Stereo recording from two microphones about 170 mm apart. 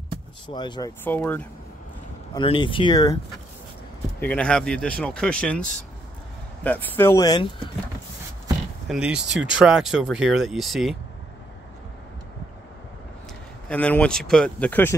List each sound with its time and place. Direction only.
0.5 s speech: 25° left (ahead or behind)
1.0 s speech: 10° left (ahead or behind)
2.3 s speech: 25° left (ahead or behind)
4.2 s speech: 5° left (ahead or behind)
6.6 s speech: 10° left (ahead or behind); by 7.7 s 25° left (ahead or behind)
8.8 s speech: 5° right (ahead or behind)
13.7 s speech: 5° left (ahead or behind)